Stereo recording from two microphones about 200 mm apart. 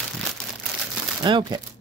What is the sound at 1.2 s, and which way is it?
Speech, 25° right (ahead or behind).